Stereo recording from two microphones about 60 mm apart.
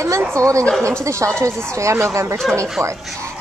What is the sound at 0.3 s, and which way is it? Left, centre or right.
Speech, right.